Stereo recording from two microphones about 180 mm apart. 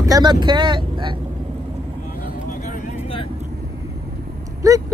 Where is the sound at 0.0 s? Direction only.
20° right (ahead or behind).